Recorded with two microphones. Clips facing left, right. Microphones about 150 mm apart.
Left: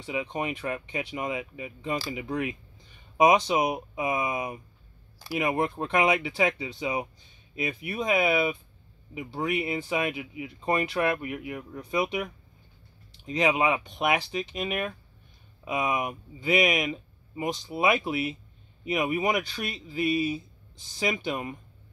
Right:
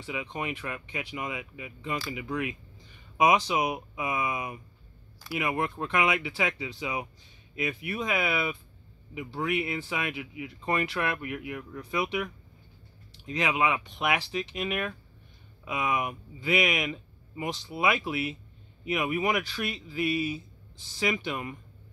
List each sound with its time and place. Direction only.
0.0 s speech: 20° left (ahead or behind)
5.2 s speech: 30° left (ahead or behind)